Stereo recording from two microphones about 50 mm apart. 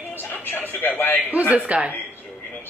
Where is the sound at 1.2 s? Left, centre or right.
Right.